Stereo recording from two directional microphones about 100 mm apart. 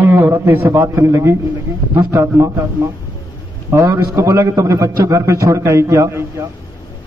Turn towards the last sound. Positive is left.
turn(degrees=-30)  # may be behind; listen again after turning